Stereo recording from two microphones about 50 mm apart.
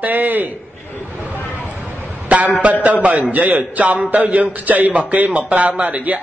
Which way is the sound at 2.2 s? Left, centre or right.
Right.